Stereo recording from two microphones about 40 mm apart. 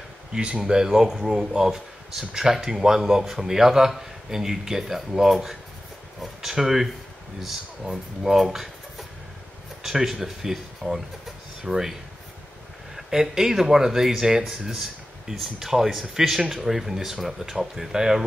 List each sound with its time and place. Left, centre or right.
0.3 s speech: right
0.7 s speech: centre
12.9 s speech: centre